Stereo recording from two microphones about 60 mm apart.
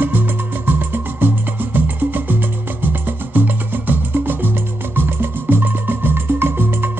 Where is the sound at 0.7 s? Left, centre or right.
Right.